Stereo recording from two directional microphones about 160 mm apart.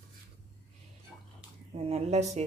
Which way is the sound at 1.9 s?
45° right (ahead or behind).